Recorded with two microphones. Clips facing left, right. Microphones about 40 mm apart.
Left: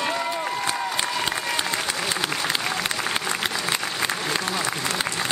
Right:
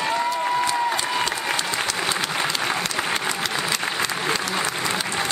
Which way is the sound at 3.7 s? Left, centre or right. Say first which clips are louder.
Right 1 dB; left.